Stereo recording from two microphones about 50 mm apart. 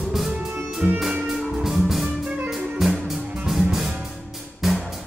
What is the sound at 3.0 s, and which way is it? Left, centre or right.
Music, centre.